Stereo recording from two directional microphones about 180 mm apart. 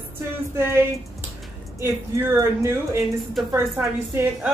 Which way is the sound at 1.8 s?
15° right (ahead or behind).